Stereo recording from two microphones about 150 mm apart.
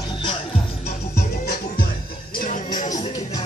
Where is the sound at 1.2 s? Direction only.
85° left; by 2.9 s 60° left (ahead or behind).